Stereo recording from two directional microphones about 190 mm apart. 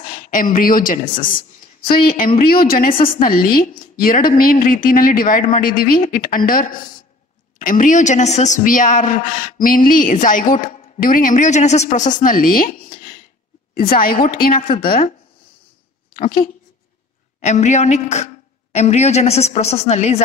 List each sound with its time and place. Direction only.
0.0 s a woman's voice: 45° left (ahead or behind)
13.7 s a woman's voice: 50° left (ahead or behind)
16.2 s a woman's voice: 50° left (ahead or behind)
17.4 s a woman's voice: 35° left (ahead or behind)